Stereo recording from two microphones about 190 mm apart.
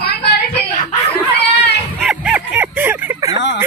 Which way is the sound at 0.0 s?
55° left (ahead or behind).